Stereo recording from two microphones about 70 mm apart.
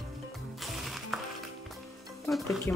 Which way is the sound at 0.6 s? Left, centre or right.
Centre.